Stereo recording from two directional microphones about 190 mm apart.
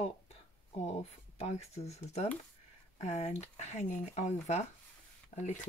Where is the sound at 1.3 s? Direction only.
35° left (ahead or behind).